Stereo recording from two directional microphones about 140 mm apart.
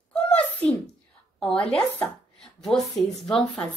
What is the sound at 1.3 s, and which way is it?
Speech, 5° left (ahead or behind).